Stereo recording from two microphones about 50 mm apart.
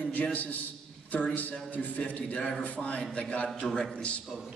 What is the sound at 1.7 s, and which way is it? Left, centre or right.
A man's voice, left.